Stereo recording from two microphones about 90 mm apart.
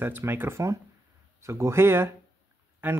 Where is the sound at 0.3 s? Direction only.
25° right (ahead or behind).